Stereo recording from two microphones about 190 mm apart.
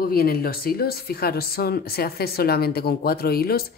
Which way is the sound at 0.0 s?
55° left (ahead or behind).